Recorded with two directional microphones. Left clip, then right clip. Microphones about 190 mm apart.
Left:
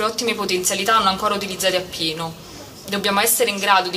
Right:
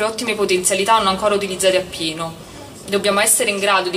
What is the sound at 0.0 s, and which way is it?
A woman's voice, 15° left (ahead or behind).